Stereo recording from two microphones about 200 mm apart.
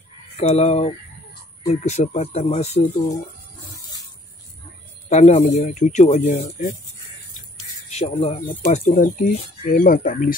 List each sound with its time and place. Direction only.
0.4 s speech: 30° left (ahead or behind)
5.1 s speech: 35° left (ahead or behind)
5.4 s speech: 45° left (ahead or behind)
7.9 s speech: 30° left (ahead or behind)
8.6 s speech: 40° left (ahead or behind)